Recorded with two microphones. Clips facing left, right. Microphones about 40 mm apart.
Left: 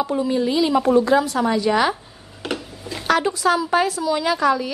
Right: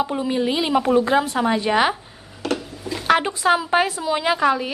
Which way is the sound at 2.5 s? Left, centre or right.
Centre.